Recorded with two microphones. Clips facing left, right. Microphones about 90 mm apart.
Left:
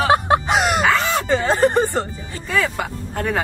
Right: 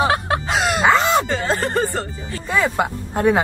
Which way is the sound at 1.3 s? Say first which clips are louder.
Left 4 dB; 20° left (ahead or behind).